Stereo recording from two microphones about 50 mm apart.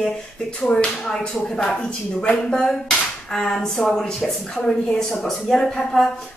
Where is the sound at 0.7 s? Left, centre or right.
Centre.